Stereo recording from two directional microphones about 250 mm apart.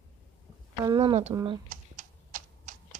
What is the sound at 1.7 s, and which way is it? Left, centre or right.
Typing, right.